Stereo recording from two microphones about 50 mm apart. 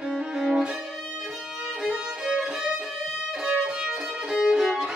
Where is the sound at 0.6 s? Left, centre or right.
Centre.